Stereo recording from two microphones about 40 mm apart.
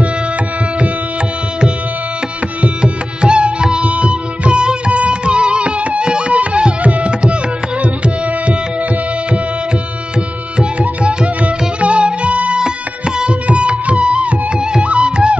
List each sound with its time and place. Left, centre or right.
2.8 s music: right
10.6 s music: right
12.5 s music: right